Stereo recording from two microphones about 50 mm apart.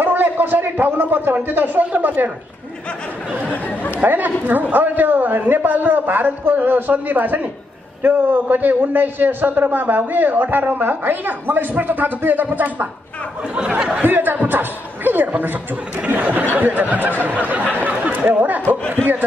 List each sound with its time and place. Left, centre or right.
0.0 s a man's voice: right
3.6 s chatter: left
4.0 s a man's voice: right
13.7 s speech: centre
14.0 s a man's voice: right